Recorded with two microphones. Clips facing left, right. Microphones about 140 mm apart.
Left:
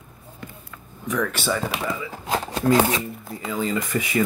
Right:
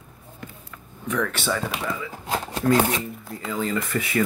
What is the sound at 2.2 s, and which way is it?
Speech, 90° left.